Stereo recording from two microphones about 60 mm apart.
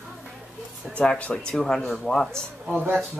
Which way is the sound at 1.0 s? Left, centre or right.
Centre.